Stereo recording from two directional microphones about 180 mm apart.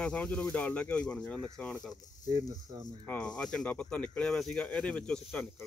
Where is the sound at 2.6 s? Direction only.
20° right (ahead or behind).